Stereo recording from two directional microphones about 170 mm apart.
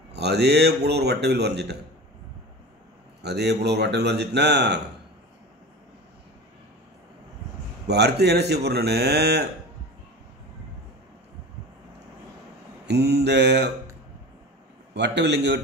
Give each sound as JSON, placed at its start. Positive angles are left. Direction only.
{"t": 0.1, "sound": "speech", "side_deg": -75}
{"t": 3.2, "sound": "speech", "side_deg": -75}
{"t": 7.8, "sound": "speech", "side_deg": -75}
{"t": 12.8, "sound": "mantra", "side_deg": -75}
{"t": 15.0, "sound": "mantra", "side_deg": -90}